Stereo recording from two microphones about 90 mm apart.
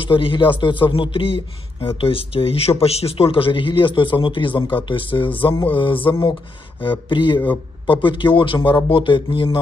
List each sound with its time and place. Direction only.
0.0 s a man's voice: 70° left (ahead or behind)